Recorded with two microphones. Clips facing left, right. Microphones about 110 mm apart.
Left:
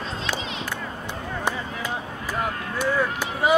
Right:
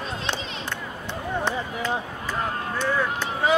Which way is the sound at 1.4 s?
10° left (ahead or behind).